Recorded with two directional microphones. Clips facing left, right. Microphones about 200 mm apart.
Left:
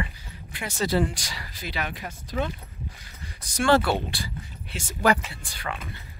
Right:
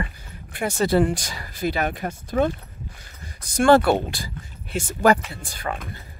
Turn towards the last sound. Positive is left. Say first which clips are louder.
# right 5 dB
turn(degrees=-45)  # may be behind; listen again after turning